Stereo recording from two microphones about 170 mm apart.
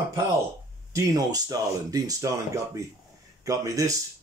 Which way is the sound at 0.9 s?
20° right (ahead or behind).